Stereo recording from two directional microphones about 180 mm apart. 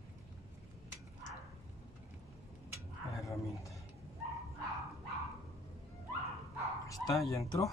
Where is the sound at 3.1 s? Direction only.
15° left (ahead or behind).